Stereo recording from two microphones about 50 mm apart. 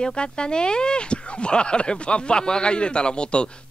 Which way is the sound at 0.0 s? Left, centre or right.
Centre.